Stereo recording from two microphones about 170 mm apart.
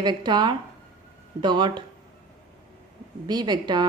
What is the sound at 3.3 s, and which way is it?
Speech, 25° right (ahead or behind).